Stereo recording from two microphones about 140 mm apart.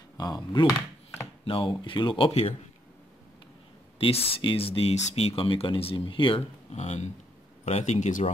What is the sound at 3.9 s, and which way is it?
Speech, 45° left (ahead or behind).